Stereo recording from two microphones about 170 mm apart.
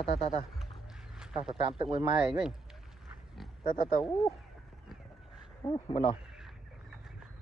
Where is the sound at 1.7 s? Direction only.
35° right (ahead or behind).